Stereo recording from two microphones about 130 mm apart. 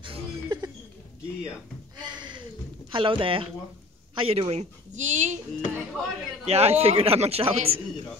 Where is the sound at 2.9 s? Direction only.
40° right (ahead or behind); by 5.3 s 70° right (ahead or behind).